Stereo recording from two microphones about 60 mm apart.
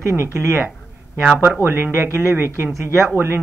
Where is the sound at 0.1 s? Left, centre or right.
Right.